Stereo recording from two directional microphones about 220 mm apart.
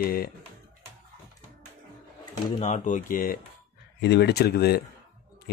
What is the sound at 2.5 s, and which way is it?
Speech, 30° left (ahead or behind).